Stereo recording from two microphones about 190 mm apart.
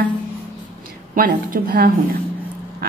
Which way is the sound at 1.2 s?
50° right (ahead or behind).